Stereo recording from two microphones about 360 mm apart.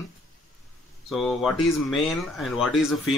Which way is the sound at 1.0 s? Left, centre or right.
Centre.